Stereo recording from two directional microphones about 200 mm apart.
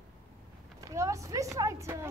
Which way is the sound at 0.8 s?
15° right (ahead or behind).